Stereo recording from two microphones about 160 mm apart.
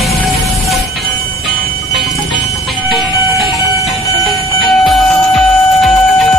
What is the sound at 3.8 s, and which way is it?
Music, centre (ahead or behind).